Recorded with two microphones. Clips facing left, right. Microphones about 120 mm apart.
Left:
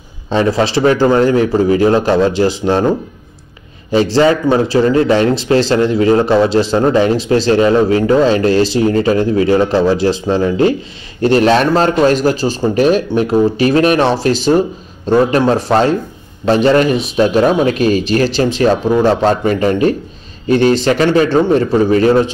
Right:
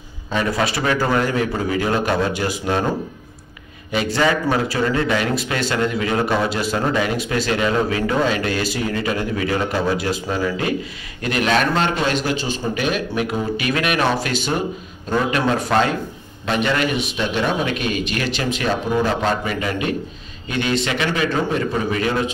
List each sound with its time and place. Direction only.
0.3 s a man's voice: 30° left (ahead or behind)
3.9 s speech: 30° left (ahead or behind)